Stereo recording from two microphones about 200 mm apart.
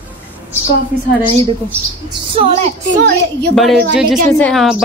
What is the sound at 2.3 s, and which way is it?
Speech, 30° right (ahead or behind).